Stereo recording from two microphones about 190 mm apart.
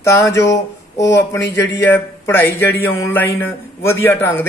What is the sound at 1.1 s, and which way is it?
Speech, 70° left (ahead or behind).